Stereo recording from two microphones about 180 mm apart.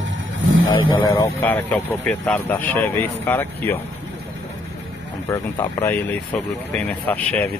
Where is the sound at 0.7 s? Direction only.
90° left.